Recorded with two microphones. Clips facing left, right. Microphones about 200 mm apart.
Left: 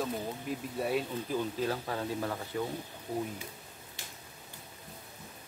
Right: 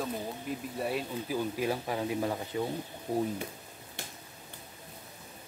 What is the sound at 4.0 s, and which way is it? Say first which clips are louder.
Finger snapping: right 6 dB; 55° right (ahead or behind).